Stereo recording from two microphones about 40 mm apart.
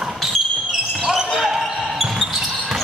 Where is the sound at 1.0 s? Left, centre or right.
Centre.